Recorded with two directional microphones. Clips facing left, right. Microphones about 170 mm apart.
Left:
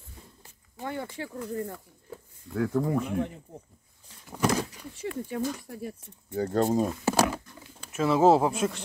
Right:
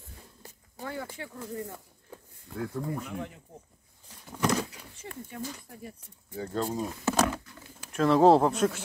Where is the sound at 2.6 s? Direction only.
90° left.